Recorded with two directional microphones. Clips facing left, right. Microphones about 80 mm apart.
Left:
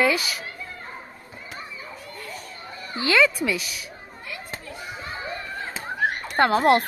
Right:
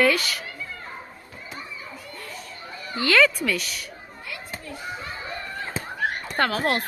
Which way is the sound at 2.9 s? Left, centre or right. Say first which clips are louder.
Right 1 dB; left.